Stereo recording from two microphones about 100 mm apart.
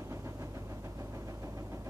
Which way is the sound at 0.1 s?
30° right (ahead or behind).